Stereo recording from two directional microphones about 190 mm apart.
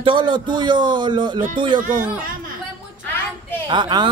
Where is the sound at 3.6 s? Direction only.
25° right (ahead or behind).